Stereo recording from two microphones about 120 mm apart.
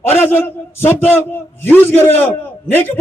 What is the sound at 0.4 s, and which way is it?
Music, 15° left (ahead or behind).